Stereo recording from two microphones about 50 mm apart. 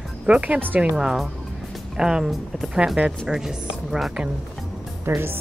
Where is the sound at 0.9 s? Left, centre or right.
Centre.